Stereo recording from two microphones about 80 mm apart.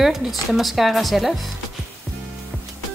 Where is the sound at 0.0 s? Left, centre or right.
Centre.